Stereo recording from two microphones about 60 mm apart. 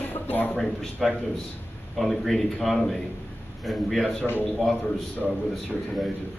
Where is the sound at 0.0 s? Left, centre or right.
Left.